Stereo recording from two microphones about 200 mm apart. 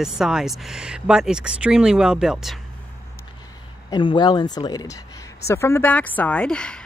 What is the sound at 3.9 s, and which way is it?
Speech, 25° left (ahead or behind).